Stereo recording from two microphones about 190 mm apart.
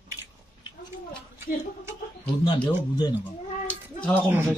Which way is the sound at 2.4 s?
20° left (ahead or behind).